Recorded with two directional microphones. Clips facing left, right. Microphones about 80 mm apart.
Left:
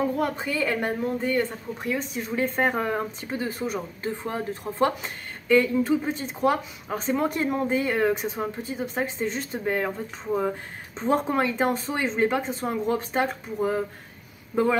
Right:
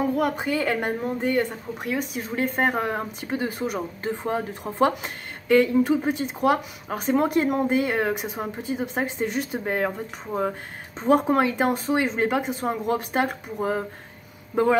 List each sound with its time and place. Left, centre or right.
0.0 s speech: centre